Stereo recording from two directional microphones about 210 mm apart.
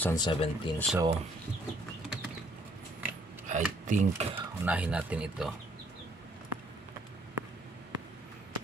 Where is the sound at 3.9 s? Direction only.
35° right (ahead or behind).